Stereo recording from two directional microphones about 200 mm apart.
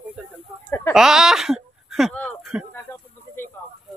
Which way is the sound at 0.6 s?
10° left (ahead or behind).